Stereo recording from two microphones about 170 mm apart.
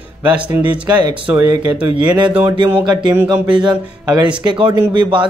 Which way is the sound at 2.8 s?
25° right (ahead or behind).